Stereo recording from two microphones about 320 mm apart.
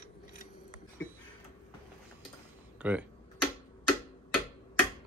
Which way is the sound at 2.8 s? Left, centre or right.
Centre.